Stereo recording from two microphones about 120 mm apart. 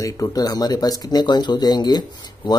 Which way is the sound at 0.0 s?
30° left (ahead or behind).